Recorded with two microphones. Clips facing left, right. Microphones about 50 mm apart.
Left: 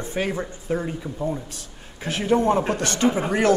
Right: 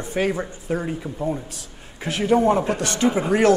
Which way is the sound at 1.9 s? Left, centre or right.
Right.